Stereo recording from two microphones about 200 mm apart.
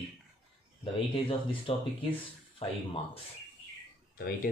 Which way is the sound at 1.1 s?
25° left (ahead or behind).